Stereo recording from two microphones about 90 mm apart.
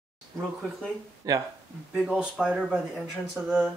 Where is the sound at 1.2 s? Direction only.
40° right (ahead or behind).